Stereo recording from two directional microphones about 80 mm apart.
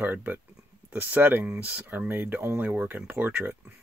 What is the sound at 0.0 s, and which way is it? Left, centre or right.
Speech, right.